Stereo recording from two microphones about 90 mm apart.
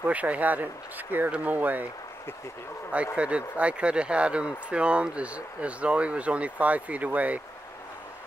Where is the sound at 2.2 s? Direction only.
30° left (ahead or behind).